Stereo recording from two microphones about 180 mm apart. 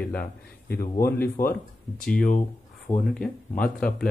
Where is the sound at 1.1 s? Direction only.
10° left (ahead or behind).